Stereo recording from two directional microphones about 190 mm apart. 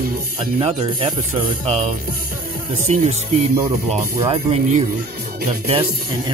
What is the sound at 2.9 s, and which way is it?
Speech, 35° right (ahead or behind).